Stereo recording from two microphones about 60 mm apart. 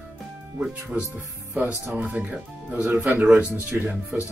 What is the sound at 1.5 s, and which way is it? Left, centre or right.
Speech, right.